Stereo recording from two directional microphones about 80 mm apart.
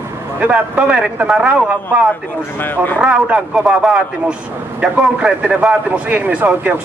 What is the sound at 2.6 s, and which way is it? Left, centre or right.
Speech, left.